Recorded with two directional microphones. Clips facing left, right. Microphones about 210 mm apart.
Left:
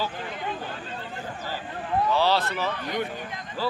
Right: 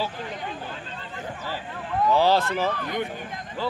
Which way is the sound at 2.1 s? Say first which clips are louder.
Right 6 dB; 45° right (ahead or behind).